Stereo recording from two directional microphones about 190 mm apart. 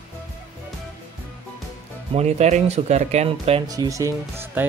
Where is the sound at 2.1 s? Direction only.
35° right (ahead or behind).